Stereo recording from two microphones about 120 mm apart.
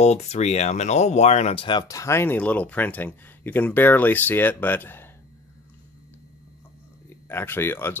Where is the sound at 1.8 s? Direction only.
25° left (ahead or behind).